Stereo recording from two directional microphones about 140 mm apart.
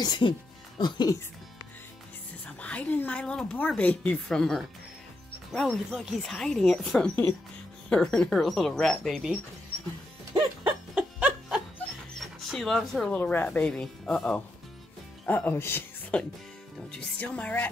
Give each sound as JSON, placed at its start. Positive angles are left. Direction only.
{"t": 0.0, "sound": "speech", "side_deg": 30}
{"t": 2.4, "sound": "a woman's voice", "side_deg": 10}
{"t": 5.7, "sound": "speech", "side_deg": -5}
{"t": 11.0, "sound": "music", "side_deg": -5}
{"t": 12.2, "sound": "speech", "side_deg": 0}
{"t": 13.1, "sound": "a woman's voice", "side_deg": 15}